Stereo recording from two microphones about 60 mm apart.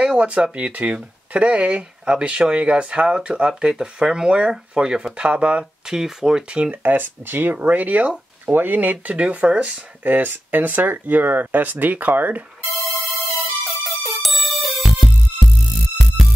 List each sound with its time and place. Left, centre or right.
0.0 s speech: centre
6.8 s speech: right
12.6 s music: centre